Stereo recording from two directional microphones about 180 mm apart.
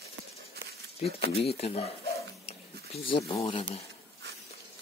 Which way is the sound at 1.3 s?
35° left (ahead or behind).